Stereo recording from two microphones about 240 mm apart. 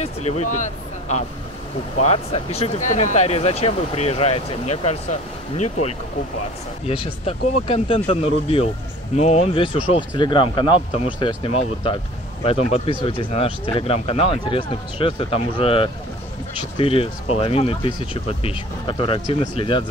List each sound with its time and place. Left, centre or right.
0.0 s speech: left